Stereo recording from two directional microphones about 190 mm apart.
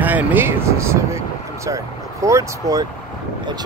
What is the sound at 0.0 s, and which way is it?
Speech, 10° right (ahead or behind).